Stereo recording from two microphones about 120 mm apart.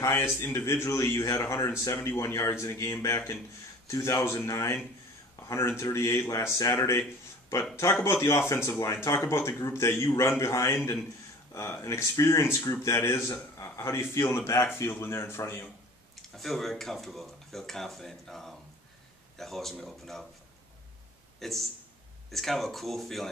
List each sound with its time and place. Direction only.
0.0 s speech: 20° left (ahead or behind)
16.3 s speech: centre (ahead or behind)
21.4 s speech: centre (ahead or behind)